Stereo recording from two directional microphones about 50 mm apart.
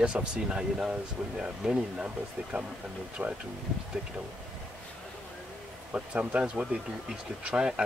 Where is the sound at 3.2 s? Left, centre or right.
Right.